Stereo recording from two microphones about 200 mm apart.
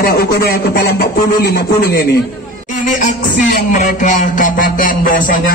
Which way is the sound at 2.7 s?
40° left (ahead or behind).